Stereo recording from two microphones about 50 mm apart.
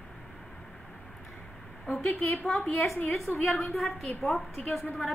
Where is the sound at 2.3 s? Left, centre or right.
Centre.